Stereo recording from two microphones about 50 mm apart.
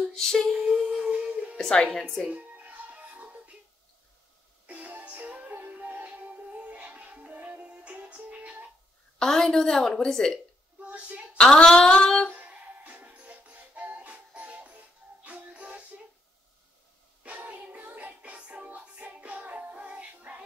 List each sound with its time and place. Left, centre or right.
0.0 s a capella: centre
0.5 s a sound: centre
1.6 s a woman's voice: centre
2.2 s music: right
4.6 s music: right
9.2 s a woman's voice: centre
10.8 s a sound: right
11.3 s a woman's voice: centre
12.4 s music: right
17.2 s music: right